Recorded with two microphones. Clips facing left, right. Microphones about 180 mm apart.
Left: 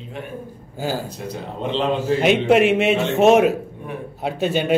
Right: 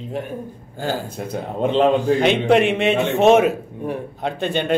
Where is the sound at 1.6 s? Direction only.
50° right (ahead or behind).